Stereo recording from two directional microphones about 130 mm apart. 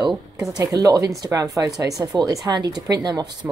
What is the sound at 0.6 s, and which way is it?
Speech, 30° right (ahead or behind).